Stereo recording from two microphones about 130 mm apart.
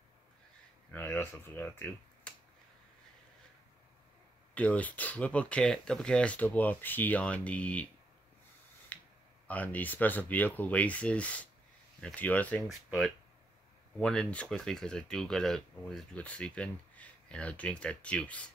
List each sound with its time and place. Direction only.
0.9 s speech: 15° left (ahead or behind)
4.6 s speech: 10° left (ahead or behind)
8.9 s a sound: 10° left (ahead or behind)
9.5 s speech: 10° left (ahead or behind)
12.6 s speech: centre (ahead or behind)